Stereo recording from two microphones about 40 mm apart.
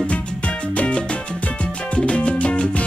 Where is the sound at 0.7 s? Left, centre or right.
Left.